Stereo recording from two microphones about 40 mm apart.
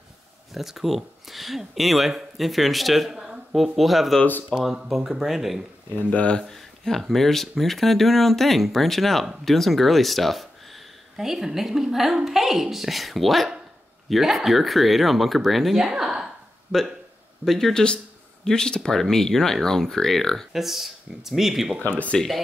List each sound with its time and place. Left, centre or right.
0.6 s speech: centre
3.1 s a sound: centre
3.7 s speech: centre
4.5 s speech: centre
5.2 s speech: centre
6.0 s speech: left
6.4 s speech: centre
11.1 s a woman's voice: centre
15.8 s a sound: centre
16.7 s speech: centre
20.5 s a woman's voice: centre
21.7 s speech: left